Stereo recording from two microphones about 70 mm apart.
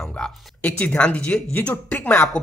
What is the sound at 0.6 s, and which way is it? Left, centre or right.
Speech, centre.